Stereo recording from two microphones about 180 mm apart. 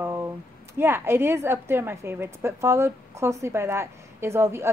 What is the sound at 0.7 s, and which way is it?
A woman's voice, 15° right (ahead or behind).